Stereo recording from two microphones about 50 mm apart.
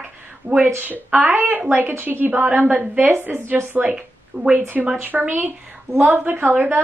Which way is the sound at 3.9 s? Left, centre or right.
Centre.